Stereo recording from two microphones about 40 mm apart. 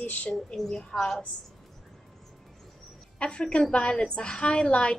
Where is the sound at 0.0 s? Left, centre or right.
Left.